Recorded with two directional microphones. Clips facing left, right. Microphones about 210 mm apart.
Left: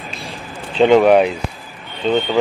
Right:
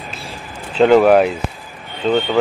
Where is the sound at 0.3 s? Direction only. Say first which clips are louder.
Left 1 dB; centre (ahead or behind).